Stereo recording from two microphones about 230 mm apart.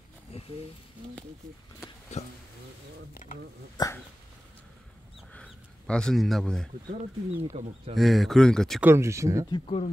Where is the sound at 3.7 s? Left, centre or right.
Centre.